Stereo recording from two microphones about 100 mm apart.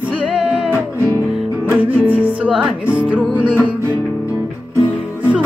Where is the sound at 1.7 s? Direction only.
15° right (ahead or behind).